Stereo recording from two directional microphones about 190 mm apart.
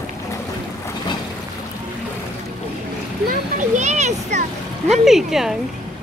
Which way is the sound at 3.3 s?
40° right (ahead or behind).